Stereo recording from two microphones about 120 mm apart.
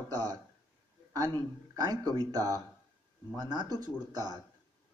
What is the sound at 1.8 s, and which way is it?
Speech, 35° right (ahead or behind).